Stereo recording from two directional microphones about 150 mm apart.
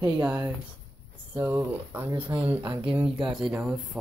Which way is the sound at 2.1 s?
35° right (ahead or behind).